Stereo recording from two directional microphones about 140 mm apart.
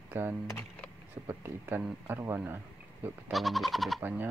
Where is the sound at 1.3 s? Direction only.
15° right (ahead or behind).